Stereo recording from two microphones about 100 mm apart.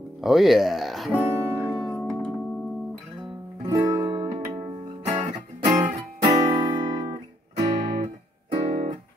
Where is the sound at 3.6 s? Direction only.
35° right (ahead or behind).